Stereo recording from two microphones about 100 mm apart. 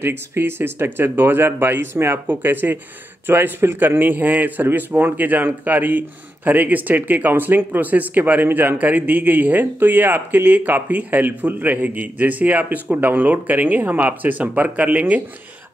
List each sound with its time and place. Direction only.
0.0 s a man's voice: 20° right (ahead or behind)